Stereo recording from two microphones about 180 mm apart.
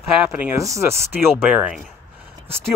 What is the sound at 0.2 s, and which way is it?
Speech, 10° right (ahead or behind).